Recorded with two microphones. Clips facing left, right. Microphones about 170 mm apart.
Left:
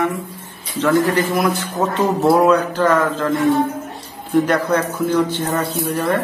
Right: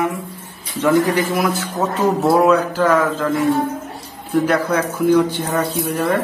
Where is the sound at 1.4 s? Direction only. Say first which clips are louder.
Left 1 dB; centre (ahead or behind).